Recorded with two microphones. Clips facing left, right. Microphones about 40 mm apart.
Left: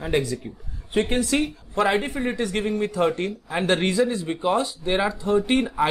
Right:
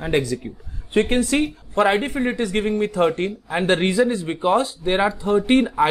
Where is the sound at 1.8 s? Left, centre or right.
Right.